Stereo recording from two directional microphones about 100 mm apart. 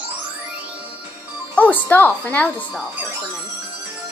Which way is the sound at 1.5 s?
15° left (ahead or behind).